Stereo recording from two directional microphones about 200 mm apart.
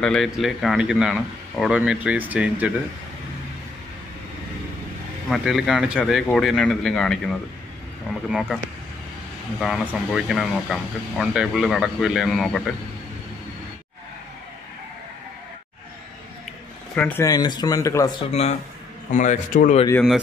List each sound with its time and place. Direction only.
0.0 s speech: centre (ahead or behind)
5.3 s speech: centre (ahead or behind)
9.6 s speech: centre (ahead or behind)
16.9 s speech: 10° left (ahead or behind)
18.2 s a man's voice: 30° left (ahead or behind)